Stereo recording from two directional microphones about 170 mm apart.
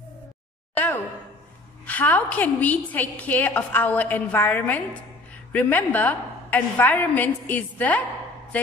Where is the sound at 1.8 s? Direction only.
10° left (ahead or behind).